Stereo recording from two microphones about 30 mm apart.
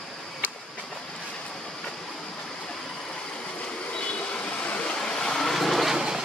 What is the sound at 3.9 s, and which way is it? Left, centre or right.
Vehicle, left.